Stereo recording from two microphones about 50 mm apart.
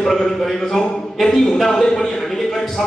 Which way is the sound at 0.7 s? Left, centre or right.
Centre.